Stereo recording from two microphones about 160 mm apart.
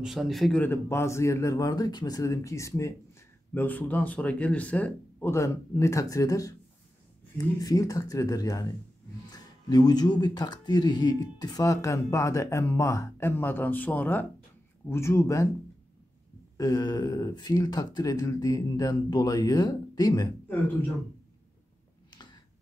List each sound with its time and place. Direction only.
0.0 s speech: centre (ahead or behind); by 15.4 s 20° left (ahead or behind)
16.5 s speech: 25° left (ahead or behind)